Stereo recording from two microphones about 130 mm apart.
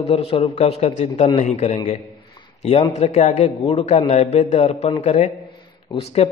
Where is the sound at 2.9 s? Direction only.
60° left (ahead or behind).